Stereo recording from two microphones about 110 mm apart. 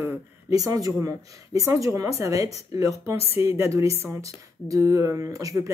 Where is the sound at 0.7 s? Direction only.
35° right (ahead or behind).